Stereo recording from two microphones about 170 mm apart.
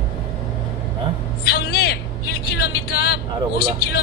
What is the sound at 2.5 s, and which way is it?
Vehicle, 65° left (ahead or behind).